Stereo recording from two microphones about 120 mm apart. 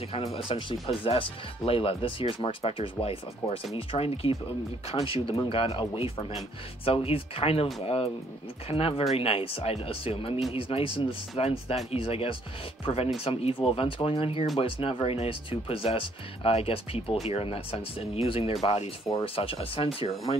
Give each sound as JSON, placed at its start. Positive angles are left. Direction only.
{"t": 0.1, "sound": "speech", "side_deg": 50}